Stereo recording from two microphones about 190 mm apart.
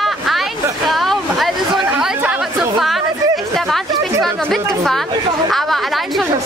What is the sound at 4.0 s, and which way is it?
Speech, centre (ahead or behind).